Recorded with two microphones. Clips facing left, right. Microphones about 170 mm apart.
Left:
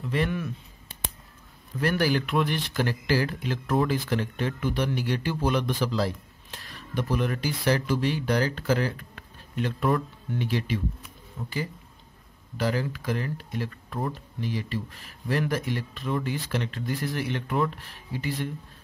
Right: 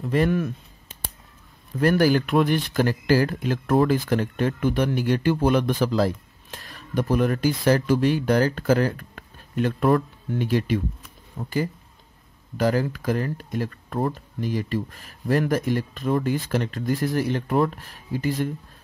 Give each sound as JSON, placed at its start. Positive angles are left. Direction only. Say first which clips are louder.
{"t": 0.0, "sound": "speech", "louder": "right 6 dB", "side_deg": -45}
{"t": 1.8, "sound": "speech", "louder": "right 6 dB", "side_deg": -45}
{"t": 12.5, "sound": "speech", "louder": "right 5 dB", "side_deg": -45}